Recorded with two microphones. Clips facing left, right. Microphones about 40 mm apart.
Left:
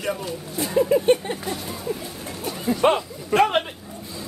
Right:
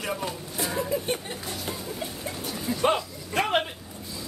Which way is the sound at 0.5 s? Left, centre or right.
Left.